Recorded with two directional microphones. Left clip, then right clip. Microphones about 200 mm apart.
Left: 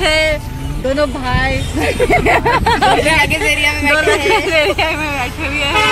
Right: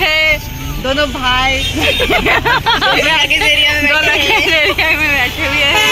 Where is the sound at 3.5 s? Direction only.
40° left (ahead or behind).